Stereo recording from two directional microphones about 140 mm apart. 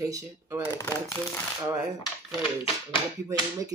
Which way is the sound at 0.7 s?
20° left (ahead or behind).